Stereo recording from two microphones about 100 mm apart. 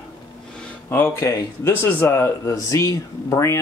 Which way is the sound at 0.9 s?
25° left (ahead or behind).